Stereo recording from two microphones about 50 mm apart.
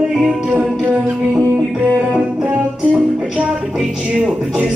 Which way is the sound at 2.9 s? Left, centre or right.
Centre.